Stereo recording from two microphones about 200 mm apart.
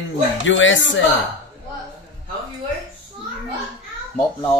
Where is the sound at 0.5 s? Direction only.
75° left (ahead or behind).